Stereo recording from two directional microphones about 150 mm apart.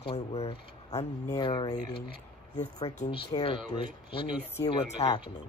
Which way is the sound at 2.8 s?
50° left (ahead or behind).